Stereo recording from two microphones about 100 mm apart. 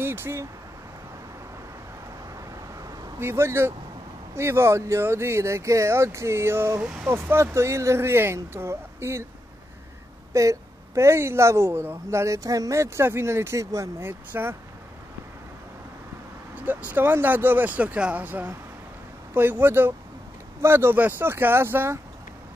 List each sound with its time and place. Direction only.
0.0 s speech: 25° right (ahead or behind)
3.2 s speech: 25° right (ahead or behind)
10.3 s speech: 30° right (ahead or behind)
16.5 s speech: 15° right (ahead or behind)